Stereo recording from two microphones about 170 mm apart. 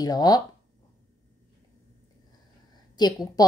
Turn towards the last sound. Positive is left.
turn(degrees=25)  # may be behind; listen again after turning